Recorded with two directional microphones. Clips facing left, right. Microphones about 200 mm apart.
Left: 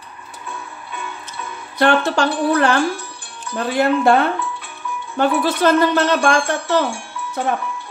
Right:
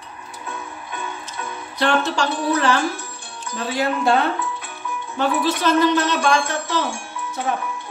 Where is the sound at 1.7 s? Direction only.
55° left (ahead or behind).